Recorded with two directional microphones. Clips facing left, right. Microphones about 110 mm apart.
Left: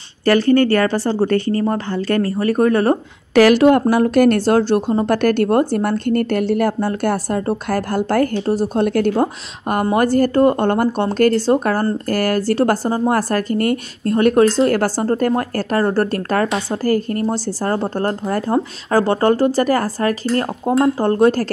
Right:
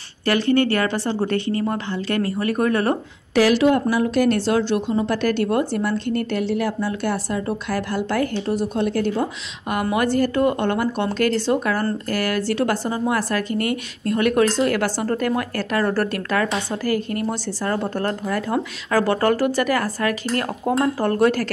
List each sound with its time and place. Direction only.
0.2 s speech: 40° left (ahead or behind)
3.3 s speech: 55° left (ahead or behind); by 8.8 s 40° left (ahead or behind)
8.8 s speech: 55° left (ahead or behind); by 21.5 s 30° left (ahead or behind)